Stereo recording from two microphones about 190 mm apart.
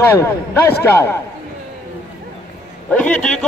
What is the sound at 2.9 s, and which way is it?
Speech, 5° left (ahead or behind).